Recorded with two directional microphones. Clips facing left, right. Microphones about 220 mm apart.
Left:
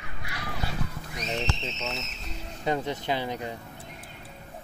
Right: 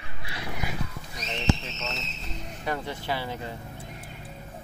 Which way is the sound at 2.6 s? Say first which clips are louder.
Left 4 dB; 20° left (ahead or behind).